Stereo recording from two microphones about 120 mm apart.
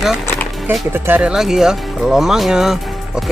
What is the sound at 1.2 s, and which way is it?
Speech, 5° right (ahead or behind).